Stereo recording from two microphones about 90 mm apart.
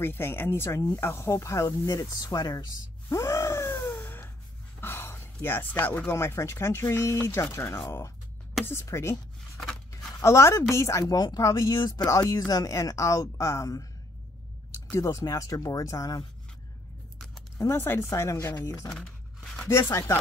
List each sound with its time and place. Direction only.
0.0 s speech: 25° left (ahead or behind)
10.2 s speech: 35° left (ahead or behind)
14.9 s speech: 35° left (ahead or behind)
17.6 s speech: 30° left (ahead or behind)
18.6 s speech: 40° left (ahead or behind)
18.9 s a sound: 5° left (ahead or behind)
19.7 s speech: 35° left (ahead or behind)